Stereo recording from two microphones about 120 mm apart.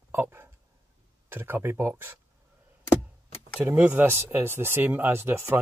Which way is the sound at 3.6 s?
10° right (ahead or behind).